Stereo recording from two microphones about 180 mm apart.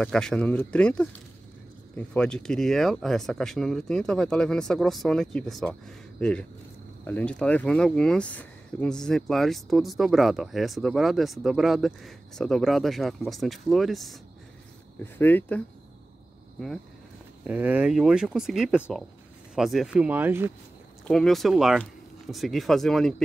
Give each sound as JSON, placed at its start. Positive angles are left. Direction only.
{"t": 0.0, "sound": "speech", "side_deg": 5}
{"t": 15.1, "sound": "speech", "side_deg": 10}
{"t": 17.5, "sound": "speech", "side_deg": -10}
{"t": 21.1, "sound": "speech", "side_deg": 0}